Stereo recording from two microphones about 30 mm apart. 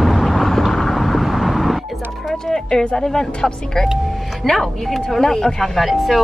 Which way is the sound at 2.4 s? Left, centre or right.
Centre.